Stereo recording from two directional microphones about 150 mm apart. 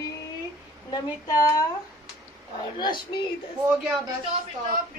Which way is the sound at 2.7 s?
30° left (ahead or behind).